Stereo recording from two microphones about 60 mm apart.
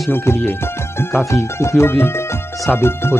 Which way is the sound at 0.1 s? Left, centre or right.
Left.